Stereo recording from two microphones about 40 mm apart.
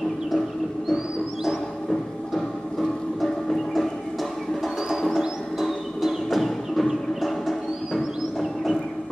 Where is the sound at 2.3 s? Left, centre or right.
Centre.